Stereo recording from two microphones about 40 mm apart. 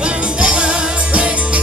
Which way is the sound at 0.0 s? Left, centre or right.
Right.